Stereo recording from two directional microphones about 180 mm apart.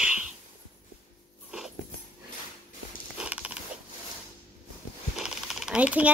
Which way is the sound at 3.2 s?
5° right (ahead or behind).